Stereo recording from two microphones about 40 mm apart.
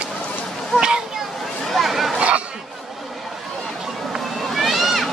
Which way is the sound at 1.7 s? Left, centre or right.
Centre.